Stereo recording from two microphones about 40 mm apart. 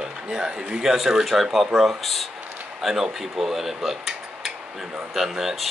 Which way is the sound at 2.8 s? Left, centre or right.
Centre.